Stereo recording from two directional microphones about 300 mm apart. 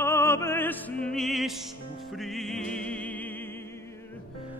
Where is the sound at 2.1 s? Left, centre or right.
Centre.